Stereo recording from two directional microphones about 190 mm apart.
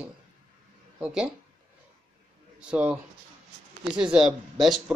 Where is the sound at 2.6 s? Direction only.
5° right (ahead or behind).